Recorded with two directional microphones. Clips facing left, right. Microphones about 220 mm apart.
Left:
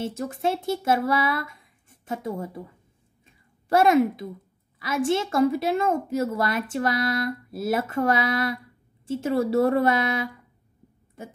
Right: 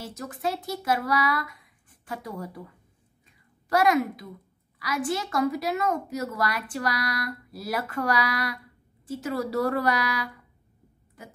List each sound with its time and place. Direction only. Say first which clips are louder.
0.0 s a woman's voice: left 5 dB; 25° left (ahead or behind)
3.6 s a woman's voice: left 4 dB; 25° left (ahead or behind)